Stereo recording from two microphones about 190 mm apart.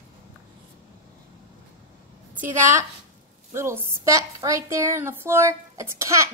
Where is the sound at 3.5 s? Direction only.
15° right (ahead or behind).